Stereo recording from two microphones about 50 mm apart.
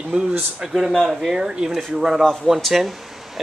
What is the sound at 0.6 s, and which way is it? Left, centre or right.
Speech, centre.